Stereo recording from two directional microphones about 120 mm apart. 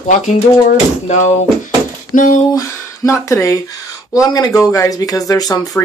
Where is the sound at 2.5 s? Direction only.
25° left (ahead or behind).